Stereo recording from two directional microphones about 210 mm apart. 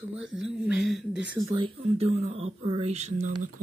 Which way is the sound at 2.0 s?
30° right (ahead or behind).